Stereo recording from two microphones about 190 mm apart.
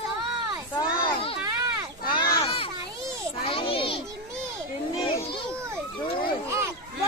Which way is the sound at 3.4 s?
30° left (ahead or behind).